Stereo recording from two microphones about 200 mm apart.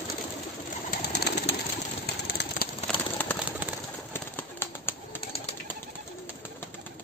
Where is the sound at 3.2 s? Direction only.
10° left (ahead or behind).